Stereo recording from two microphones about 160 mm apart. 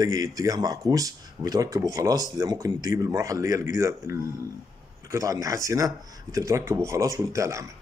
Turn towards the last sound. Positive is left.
turn(degrees=-20)  # may be behind; listen again after turning